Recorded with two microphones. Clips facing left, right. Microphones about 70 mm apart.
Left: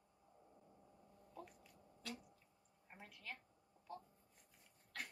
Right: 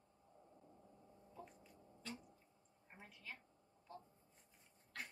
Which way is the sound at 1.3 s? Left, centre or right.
Left.